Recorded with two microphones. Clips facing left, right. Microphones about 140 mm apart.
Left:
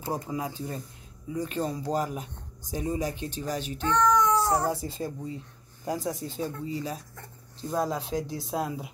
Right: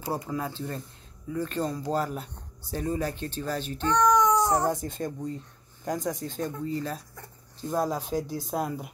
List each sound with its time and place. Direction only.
0.3 s speech: 10° left (ahead or behind)
3.9 s cat: 15° right (ahead or behind)
4.6 s speech: 5° left (ahead or behind)
7.7 s speech: 5° right (ahead or behind)